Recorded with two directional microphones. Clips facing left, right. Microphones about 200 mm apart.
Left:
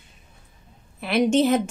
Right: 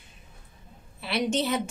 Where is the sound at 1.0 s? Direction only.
50° left (ahead or behind).